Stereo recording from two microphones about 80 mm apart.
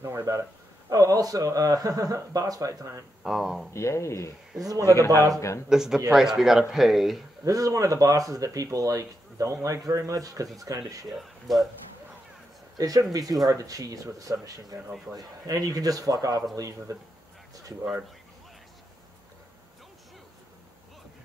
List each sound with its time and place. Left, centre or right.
0.0 s a man's voice: right
3.3 s speech: centre
3.7 s speech: left
5.7 s a man's voice: centre
7.4 s a man's voice: right
11.1 s speech: centre
12.7 s a man's voice: right